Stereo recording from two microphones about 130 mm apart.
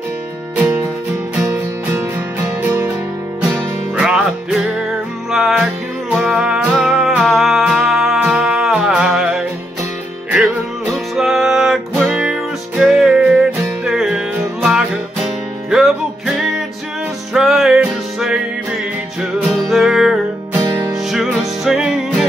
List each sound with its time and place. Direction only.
1.4 s music: 25° right (ahead or behind)
3.9 s music: 5° right (ahead or behind)
17.3 s music: centre (ahead or behind)
19.7 s music: centre (ahead or behind)
20.6 s music: 30° right (ahead or behind)
20.9 s music: centre (ahead or behind)